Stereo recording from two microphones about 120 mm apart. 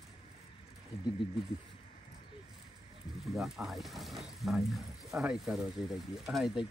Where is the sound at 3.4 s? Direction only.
Centre (ahead or behind).